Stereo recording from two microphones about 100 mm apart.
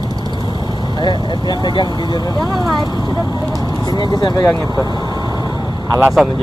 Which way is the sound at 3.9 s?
45° left (ahead or behind).